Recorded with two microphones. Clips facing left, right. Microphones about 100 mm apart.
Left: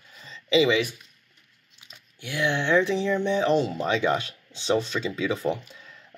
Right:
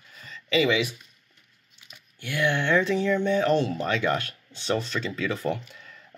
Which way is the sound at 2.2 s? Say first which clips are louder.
Right 1 dB; 15° left (ahead or behind).